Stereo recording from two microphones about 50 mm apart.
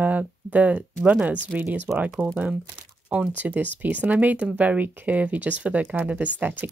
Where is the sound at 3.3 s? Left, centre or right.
Right.